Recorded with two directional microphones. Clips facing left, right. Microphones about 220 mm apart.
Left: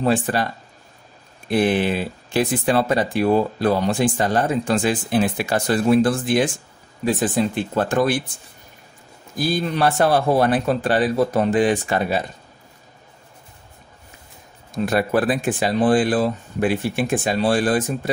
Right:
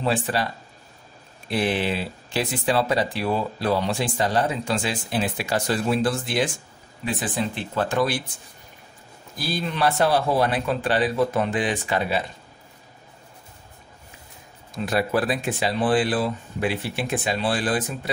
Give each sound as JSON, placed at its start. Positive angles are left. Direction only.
{"t": 0.0, "sound": "speech", "side_deg": 50}
{"t": 1.5, "sound": "speech", "side_deg": 50}
{"t": 9.4, "sound": "speech", "side_deg": 50}
{"t": 14.9, "sound": "speech", "side_deg": 50}